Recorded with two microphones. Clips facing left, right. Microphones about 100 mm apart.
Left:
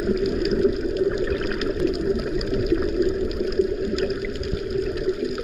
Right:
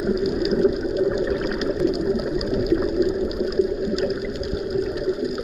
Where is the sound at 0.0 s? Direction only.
10° right (ahead or behind).